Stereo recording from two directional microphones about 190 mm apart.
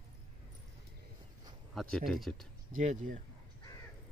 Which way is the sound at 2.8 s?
45° right (ahead or behind).